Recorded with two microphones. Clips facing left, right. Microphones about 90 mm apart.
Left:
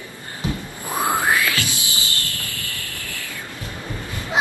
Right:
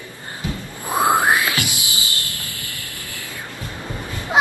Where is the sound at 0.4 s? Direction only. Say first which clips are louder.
Left 2 dB; 20° left (ahead or behind).